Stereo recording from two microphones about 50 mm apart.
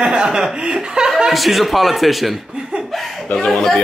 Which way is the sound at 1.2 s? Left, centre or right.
Centre.